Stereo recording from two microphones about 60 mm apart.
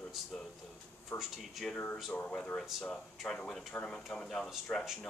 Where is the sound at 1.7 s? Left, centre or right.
Left.